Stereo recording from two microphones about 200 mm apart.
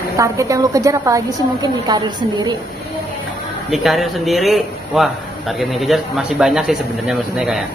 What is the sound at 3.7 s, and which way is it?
Speech, centre (ahead or behind).